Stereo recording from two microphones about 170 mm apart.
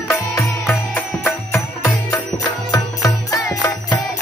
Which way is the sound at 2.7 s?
20° left (ahead or behind).